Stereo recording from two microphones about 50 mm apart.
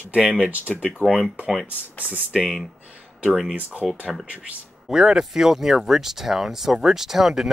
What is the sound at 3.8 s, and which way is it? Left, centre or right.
Speech, centre.